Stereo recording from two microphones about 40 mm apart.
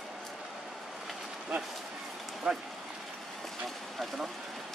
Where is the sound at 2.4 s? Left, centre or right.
Right.